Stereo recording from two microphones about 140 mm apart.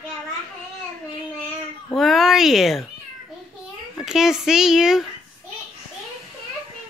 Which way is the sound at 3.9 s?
5° right (ahead or behind).